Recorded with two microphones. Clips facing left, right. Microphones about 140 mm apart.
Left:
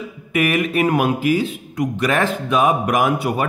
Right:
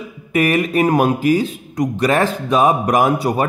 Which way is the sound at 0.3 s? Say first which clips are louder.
Right 3 dB; 35° right (ahead or behind).